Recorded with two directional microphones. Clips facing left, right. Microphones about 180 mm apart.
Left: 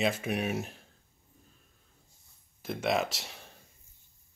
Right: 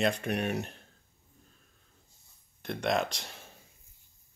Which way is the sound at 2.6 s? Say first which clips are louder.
Even; centre (ahead or behind).